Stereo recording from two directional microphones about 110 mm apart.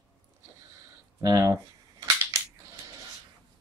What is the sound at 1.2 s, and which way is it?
Speech, 35° right (ahead or behind).